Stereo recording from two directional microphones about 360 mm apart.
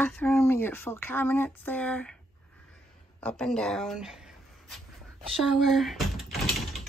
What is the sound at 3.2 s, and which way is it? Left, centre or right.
Speech, centre.